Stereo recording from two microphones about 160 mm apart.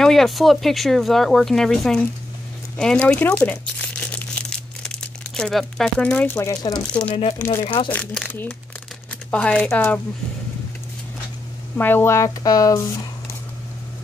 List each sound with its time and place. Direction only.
0.0 s speech: centre (ahead or behind)
4.0 s crumpling: 10° left (ahead or behind); by 6.8 s 25° left (ahead or behind)
6.9 s speech: 10° left (ahead or behind)
7.6 s speech: 30° left (ahead or behind)
7.9 s speech: 10° left (ahead or behind)
11.7 s speech: 10° left (ahead or behind)